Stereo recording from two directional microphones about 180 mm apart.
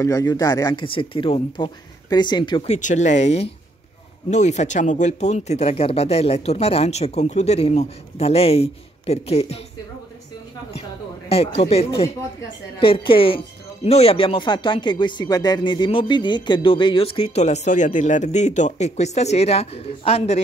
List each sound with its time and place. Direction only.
0.0 s speech: 20° left (ahead or behind); by 9.6 s 35° left (ahead or behind)
11.2 s speech: 35° left (ahead or behind)